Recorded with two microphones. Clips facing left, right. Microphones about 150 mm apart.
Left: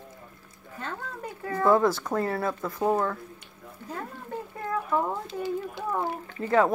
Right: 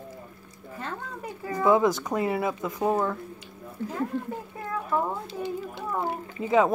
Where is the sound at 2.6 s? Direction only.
20° right (ahead or behind).